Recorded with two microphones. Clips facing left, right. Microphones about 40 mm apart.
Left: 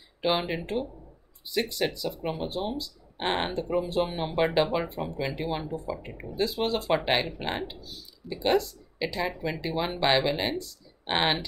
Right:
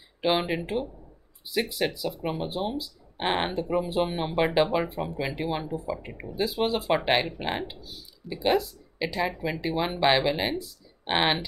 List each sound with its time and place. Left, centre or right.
0.2 s speech: centre